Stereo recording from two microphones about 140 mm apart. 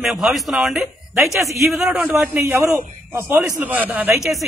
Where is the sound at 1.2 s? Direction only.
20° right (ahead or behind).